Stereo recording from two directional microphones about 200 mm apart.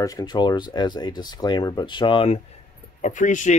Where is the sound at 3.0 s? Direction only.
40° left (ahead or behind).